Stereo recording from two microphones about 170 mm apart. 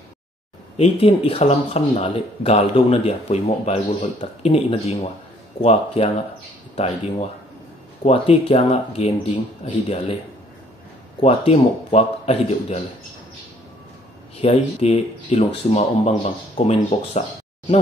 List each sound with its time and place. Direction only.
0.7 s speech: 35° left (ahead or behind)
11.1 s speech: 35° left (ahead or behind)
14.3 s speech: 40° left (ahead or behind)